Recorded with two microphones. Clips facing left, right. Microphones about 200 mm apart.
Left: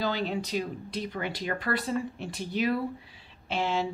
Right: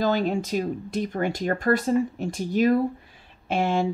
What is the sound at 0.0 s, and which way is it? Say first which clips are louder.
Speech: right 6 dB; 45° right (ahead or behind).